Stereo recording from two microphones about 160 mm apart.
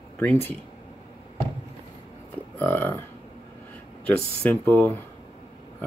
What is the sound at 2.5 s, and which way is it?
Speech, 15° left (ahead or behind).